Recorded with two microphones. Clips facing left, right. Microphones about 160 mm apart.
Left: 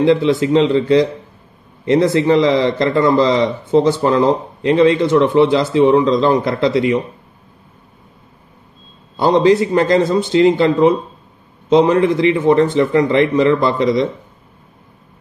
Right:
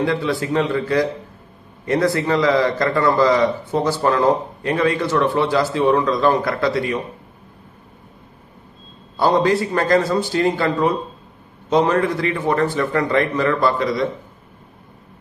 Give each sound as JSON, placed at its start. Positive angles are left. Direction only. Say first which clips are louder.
{"t": 0.0, "sound": "a man's voice", "louder": "left 7 dB", "side_deg": 20}
{"t": 9.1, "sound": "a man's voice", "louder": "left 5 dB", "side_deg": 20}